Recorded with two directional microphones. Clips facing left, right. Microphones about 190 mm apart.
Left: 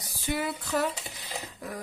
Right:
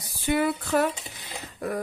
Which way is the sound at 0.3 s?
55° right (ahead or behind).